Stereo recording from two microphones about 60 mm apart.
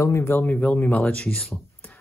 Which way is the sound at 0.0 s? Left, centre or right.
Left.